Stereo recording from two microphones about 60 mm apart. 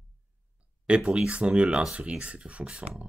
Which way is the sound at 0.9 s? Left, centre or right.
Centre.